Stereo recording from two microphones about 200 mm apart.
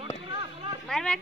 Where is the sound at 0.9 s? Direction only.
5° left (ahead or behind).